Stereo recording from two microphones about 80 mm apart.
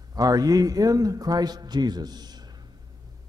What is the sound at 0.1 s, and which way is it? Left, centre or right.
A man's voice, right.